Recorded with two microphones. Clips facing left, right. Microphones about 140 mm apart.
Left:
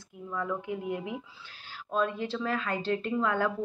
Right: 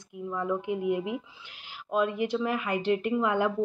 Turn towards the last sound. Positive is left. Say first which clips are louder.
# right 2 dB
turn(degrees=-15)  # may be behind; listen again after turning